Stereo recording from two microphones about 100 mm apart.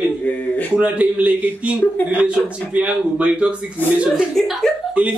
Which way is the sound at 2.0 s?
15° left (ahead or behind).